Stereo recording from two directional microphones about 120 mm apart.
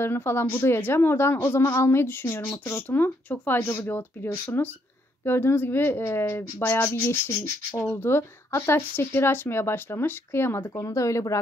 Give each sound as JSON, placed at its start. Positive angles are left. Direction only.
{"t": 0.0, "sound": "speech", "side_deg": 20}